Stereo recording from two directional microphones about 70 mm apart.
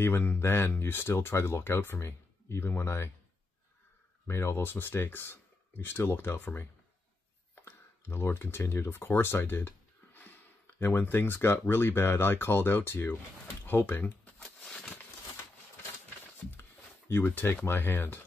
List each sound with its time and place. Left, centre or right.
0.0 s speech: left
4.3 s speech: left
14.4 s a sound: centre
17.1 s speech: left